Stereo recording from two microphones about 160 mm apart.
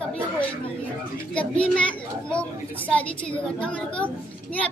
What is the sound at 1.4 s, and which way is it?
A woman's voice, 5° left (ahead or behind).